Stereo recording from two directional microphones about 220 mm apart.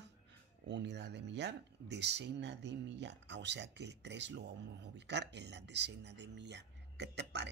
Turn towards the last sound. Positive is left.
turn(degrees=-50)  # may be behind; listen again after turning